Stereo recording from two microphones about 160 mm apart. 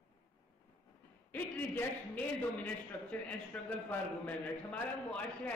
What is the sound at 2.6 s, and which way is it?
A man's voice, 10° left (ahead or behind).